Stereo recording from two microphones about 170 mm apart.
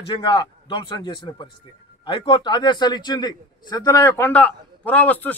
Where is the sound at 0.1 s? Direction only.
30° left (ahead or behind).